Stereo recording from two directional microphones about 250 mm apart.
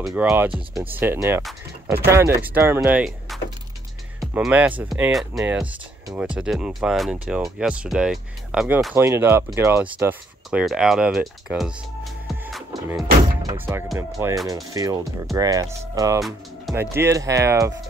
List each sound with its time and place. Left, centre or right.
0.0 s speech: centre
0.5 s speech: right
0.8 s speech: centre
13.4 s speech: centre
16.2 s speech: centre
16.8 s speech: centre